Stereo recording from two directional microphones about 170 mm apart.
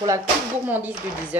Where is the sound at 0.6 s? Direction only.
10° right (ahead or behind).